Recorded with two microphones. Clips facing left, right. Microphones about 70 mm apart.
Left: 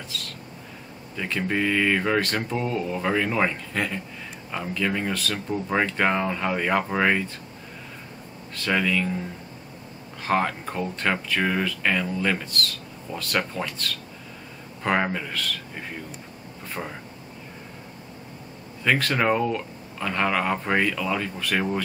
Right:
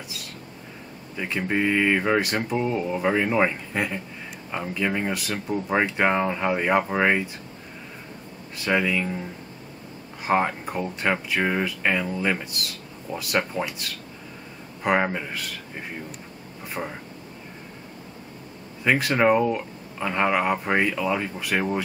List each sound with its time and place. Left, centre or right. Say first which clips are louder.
0.1 s a sound: left 3 dB; centre
1.1 s speech: right 1 dB; centre
8.5 s speech: right 1 dB; centre
10.2 s speech: right 1 dB; centre
16.8 s speech: right 2 dB; centre
18.9 s speech: right 2 dB; centre